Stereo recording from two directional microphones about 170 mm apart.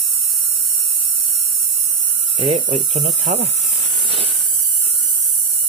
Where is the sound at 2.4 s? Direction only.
30° right (ahead or behind).